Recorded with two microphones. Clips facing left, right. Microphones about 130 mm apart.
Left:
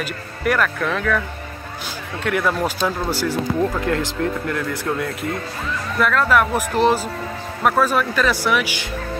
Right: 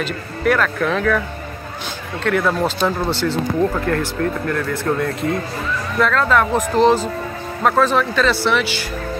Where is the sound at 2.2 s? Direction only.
10° left (ahead or behind).